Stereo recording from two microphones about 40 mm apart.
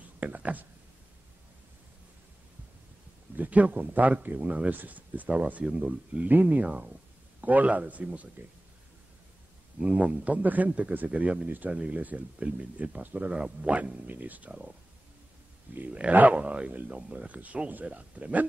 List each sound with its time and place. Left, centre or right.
0.2 s speech: right
3.3 s speech: right
6.2 s speech: right
7.4 s speech: right
9.8 s speech: right
11.4 s speech: right
11.7 s speech: right
12.0 s speech: right
15.9 s speech: right
17.3 s speech: right